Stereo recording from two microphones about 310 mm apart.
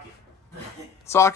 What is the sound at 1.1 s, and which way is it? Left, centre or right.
Speech, centre.